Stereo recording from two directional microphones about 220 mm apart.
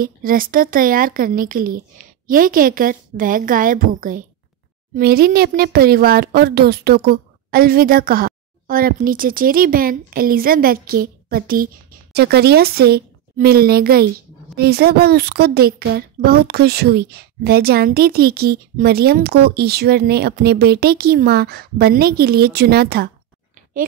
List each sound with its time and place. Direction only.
0.0 s speech: 40° right (ahead or behind)